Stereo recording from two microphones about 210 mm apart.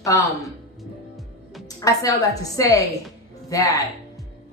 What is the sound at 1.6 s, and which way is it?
Speech, 15° left (ahead or behind).